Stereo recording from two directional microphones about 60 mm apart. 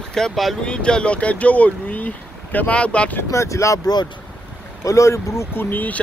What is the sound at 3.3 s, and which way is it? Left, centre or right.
Speech, left.